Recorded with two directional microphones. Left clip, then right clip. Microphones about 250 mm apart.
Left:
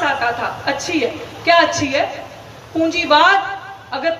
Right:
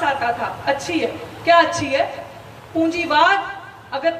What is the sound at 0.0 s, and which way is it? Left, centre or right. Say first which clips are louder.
A woman's voice: left 2 dB; centre.